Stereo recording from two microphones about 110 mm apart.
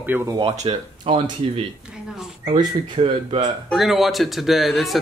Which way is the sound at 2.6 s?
50° right (ahead or behind).